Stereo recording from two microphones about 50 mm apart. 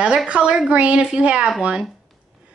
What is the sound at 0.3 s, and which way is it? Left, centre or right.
A woman's voice, right.